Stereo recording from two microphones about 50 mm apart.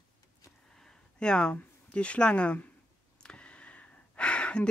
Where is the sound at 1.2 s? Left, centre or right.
Centre.